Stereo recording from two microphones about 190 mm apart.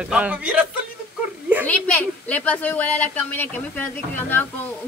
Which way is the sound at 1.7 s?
10° left (ahead or behind).